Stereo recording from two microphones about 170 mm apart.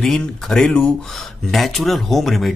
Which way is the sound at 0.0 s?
Centre (ahead or behind).